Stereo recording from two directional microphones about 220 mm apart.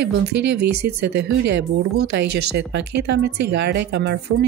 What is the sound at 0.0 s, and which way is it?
Speech, 50° right (ahead or behind).